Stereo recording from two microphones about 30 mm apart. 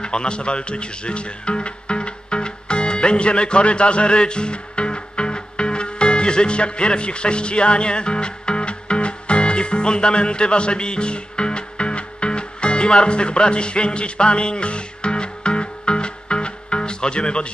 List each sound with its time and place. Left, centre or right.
0.0 s music: left